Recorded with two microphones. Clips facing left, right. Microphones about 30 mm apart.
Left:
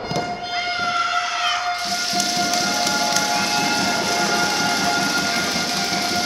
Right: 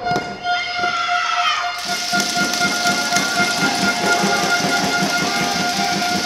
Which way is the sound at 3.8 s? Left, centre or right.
Right.